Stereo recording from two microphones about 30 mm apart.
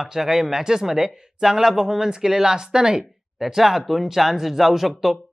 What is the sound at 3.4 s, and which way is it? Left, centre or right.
Speech, centre.